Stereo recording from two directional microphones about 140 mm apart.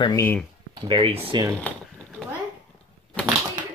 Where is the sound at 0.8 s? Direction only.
40° right (ahead or behind).